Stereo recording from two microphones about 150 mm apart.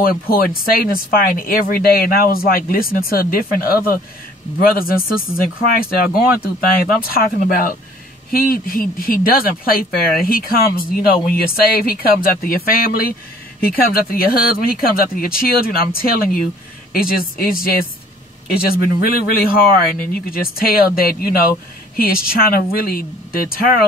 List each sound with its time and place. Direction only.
0.0 s speech: 80° left
4.6 s speech: 75° left (ahead or behind)